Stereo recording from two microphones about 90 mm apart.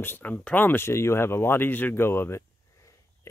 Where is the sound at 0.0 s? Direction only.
20° left (ahead or behind).